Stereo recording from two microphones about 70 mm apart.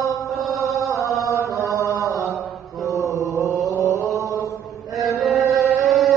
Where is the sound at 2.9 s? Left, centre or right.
Left.